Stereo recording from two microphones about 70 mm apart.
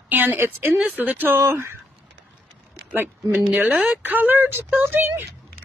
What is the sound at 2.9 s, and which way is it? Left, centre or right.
Speech, right.